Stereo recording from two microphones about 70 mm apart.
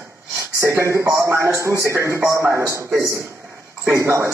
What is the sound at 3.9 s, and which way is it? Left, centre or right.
Speech, right.